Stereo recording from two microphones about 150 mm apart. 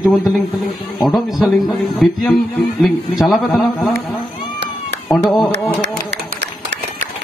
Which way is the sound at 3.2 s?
Centre (ahead or behind).